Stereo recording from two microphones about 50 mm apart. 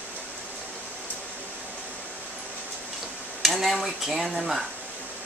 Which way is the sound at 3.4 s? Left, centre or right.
Centre.